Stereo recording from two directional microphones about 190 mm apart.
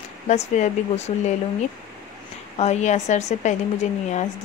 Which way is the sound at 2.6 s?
35° left (ahead or behind).